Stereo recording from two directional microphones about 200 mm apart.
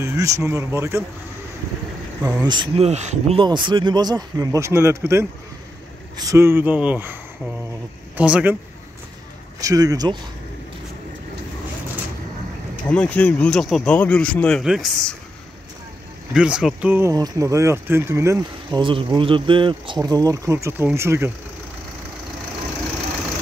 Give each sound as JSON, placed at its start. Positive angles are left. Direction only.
{"t": 0.0, "sound": "speech", "side_deg": -15}
{"t": 2.4, "sound": "speech", "side_deg": -25}
{"t": 8.2, "sound": "speech", "side_deg": -5}
{"t": 9.6, "sound": "speech", "side_deg": -15}
{"t": 12.8, "sound": "speech", "side_deg": 5}
{"t": 16.3, "sound": "speech", "side_deg": -5}